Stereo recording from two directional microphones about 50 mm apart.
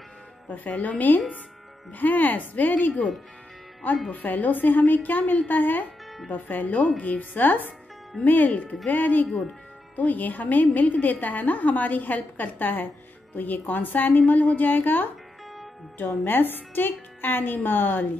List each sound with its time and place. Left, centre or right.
0.5 s a woman's voice: left
4.1 s a woman's voice: left